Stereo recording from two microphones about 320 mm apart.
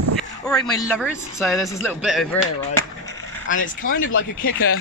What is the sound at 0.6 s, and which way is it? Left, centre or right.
Speech, centre.